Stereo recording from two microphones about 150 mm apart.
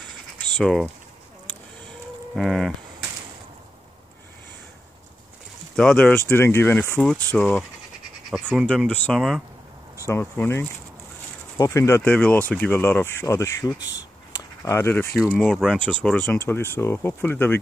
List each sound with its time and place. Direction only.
0.6 s speech: centre (ahead or behind)
2.3 s speech: 5° left (ahead or behind)
5.8 s speech: 5° left (ahead or behind)
10.0 s speech: 15° left (ahead or behind)